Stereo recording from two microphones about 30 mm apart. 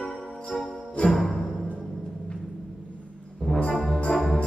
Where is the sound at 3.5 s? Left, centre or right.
Left.